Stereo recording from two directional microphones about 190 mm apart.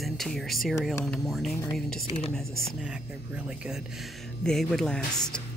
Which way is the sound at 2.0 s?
30° left (ahead or behind).